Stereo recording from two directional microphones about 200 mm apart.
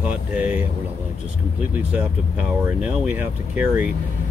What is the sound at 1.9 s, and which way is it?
Speech, 5° right (ahead or behind).